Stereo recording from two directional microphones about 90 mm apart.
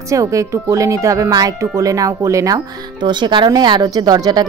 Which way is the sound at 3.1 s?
60° right (ahead or behind).